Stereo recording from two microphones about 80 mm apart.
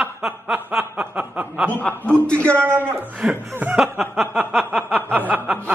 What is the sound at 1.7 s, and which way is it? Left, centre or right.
Speech, centre.